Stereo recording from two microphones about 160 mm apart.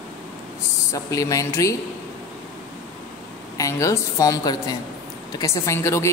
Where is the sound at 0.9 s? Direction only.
20° left (ahead or behind).